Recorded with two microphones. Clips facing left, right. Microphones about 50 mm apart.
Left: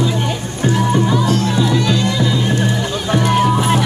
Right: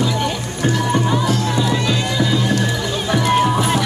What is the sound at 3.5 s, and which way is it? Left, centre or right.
Music, centre.